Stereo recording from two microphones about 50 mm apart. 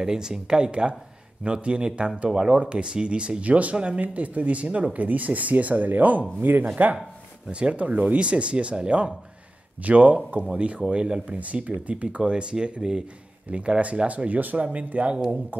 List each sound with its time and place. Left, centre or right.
0.0 s speech: centre; by 6.6 s right
7.5 s speech: right